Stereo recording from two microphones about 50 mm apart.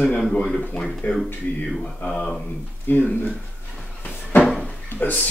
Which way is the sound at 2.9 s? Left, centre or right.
Left.